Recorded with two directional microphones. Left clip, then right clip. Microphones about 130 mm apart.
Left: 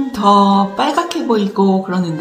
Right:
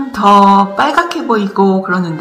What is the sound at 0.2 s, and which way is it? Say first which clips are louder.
Speech: right 5 dB; centre (ahead or behind).